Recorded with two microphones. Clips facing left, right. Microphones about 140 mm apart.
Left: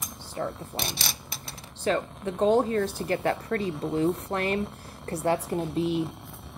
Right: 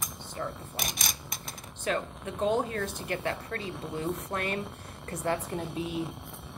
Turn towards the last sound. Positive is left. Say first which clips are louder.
# left 1 dB
turn(degrees=0)  # may be behind; listen again after turning